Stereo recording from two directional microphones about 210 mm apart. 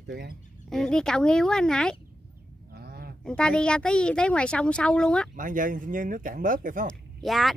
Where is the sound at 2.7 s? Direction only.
50° right (ahead or behind).